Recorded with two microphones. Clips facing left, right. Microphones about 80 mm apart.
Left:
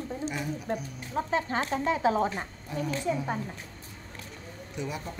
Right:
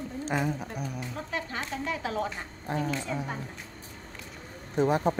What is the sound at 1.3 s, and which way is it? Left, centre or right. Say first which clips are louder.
Speech: left 5 dB; left.